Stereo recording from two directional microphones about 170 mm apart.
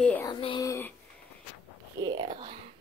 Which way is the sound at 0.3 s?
30° left (ahead or behind).